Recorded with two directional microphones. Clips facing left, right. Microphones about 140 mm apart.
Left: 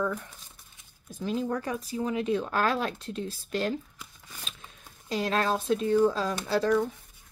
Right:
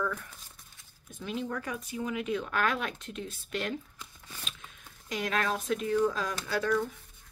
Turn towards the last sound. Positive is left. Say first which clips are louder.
# left 5 dB
turn(degrees=30)  # may be behind; listen again after turning